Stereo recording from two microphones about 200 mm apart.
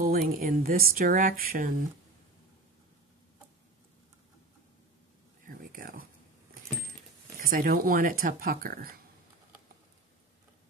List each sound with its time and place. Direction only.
0.0 s speech: 45° right (ahead or behind)
5.5 s a sound: 45° right (ahead or behind)
7.3 s speech: 45° right (ahead or behind)